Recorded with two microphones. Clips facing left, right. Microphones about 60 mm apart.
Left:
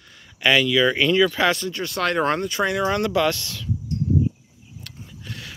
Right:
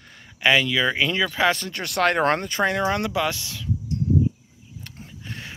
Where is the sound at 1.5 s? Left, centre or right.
Right.